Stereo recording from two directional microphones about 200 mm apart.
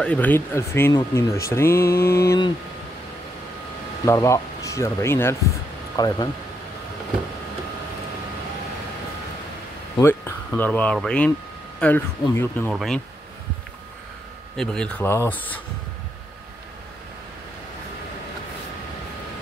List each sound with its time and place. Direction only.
0.0 s speech: 5° left (ahead or behind)
1.8 s mantra: 50° left (ahead or behind)
2.2 s speech: 20° left (ahead or behind)
4.0 s speech: 15° left (ahead or behind)
9.9 s speech: 10° left (ahead or behind)
14.6 s speech: 5° left (ahead or behind)